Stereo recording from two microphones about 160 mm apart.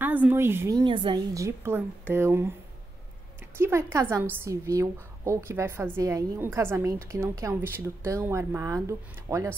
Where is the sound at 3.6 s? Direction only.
15° right (ahead or behind).